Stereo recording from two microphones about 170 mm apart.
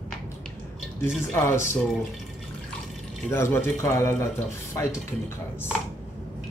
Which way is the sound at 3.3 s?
15° left (ahead or behind).